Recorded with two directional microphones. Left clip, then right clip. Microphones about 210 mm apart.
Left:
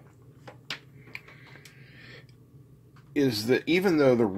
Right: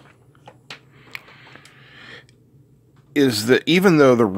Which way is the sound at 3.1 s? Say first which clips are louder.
Right 8 dB; 45° right (ahead or behind).